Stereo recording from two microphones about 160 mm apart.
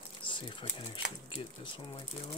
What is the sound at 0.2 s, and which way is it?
Speech, 30° left (ahead or behind).